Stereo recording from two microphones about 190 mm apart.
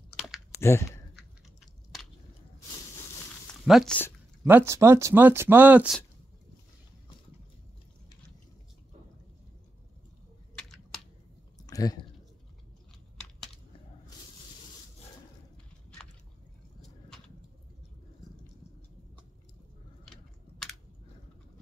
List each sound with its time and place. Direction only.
0.1 s chewing: centre (ahead or behind)
0.6 s speech: 15° left (ahead or behind)
3.6 s speech: centre (ahead or behind)
4.5 s speech: 15° right (ahead or behind)
10.6 s a sound: centre (ahead or behind)
11.6 s chewing: 20° left (ahead or behind)
20.1 s chewing: 5° left (ahead or behind)